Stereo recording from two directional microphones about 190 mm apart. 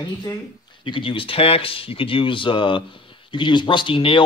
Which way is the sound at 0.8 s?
25° left (ahead or behind).